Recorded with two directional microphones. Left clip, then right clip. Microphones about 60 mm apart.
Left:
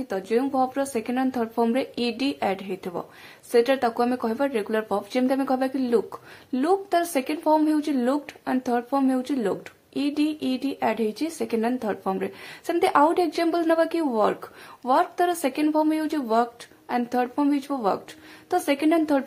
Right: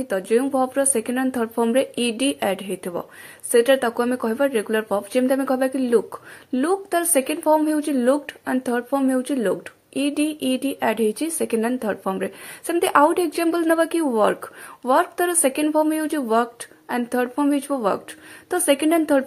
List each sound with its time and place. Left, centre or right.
0.1 s a woman's voice: right
5.4 s a woman's voice: centre
5.7 s a woman's voice: right